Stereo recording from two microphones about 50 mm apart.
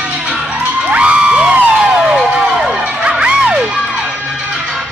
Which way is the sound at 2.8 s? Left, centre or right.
Centre.